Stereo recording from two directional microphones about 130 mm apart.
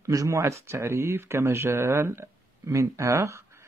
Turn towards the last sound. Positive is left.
turn(degrees=-20)  # may be behind; listen again after turning